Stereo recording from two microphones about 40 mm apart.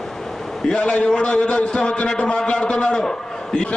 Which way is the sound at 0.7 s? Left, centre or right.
Left.